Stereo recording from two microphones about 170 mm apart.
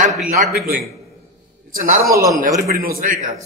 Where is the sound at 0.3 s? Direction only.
50° right (ahead or behind).